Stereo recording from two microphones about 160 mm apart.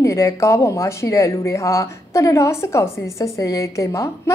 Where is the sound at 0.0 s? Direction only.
20° left (ahead or behind).